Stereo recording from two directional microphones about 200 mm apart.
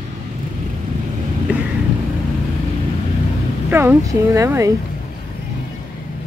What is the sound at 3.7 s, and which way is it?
Speech, 10° right (ahead or behind).